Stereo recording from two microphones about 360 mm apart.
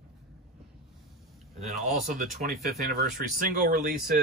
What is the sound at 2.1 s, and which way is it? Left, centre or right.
Speech, right.